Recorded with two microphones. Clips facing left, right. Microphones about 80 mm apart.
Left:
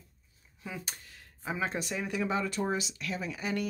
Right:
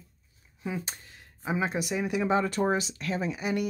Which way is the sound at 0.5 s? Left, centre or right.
Right.